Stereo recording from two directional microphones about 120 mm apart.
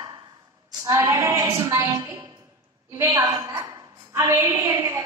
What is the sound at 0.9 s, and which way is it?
A woman's voice, 25° right (ahead or behind).